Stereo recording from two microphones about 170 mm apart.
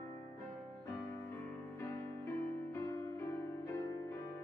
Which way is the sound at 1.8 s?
15° left (ahead or behind).